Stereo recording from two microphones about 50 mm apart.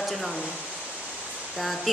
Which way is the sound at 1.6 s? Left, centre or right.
Centre.